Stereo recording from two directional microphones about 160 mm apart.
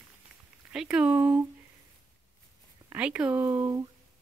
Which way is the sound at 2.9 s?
10° right (ahead or behind).